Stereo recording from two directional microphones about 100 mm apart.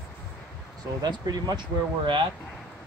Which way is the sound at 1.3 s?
45° right (ahead or behind).